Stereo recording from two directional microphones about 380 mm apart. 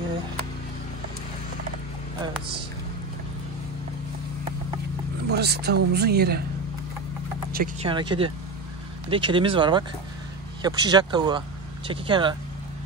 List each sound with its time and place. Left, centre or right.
5.3 s speech: right
7.5 s speech: centre